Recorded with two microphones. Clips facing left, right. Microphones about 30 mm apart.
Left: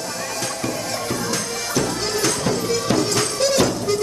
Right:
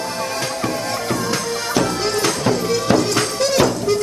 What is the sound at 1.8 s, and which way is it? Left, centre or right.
Music, centre.